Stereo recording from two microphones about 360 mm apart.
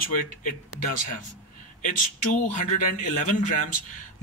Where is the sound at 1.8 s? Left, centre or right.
Left.